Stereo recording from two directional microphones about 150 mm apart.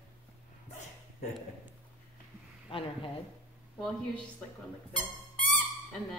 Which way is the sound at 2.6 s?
35° left (ahead or behind).